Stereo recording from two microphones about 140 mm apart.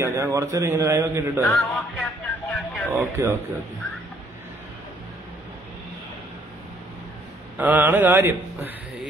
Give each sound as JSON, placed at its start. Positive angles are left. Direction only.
{"t": 0.0, "sound": "a man's voice", "side_deg": -20}
{"t": 1.5, "sound": "music", "side_deg": 0}
{"t": 2.5, "sound": "vehicle", "side_deg": 5}
{"t": 2.9, "sound": "a man's voice", "side_deg": -20}
{"t": 7.5, "sound": "mantra", "side_deg": -10}